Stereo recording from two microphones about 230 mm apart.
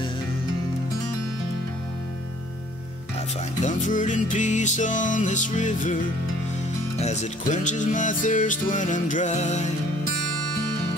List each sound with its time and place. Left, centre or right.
3.6 s music: left